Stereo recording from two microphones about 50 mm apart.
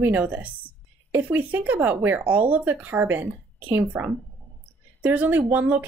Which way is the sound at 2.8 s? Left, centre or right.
Right.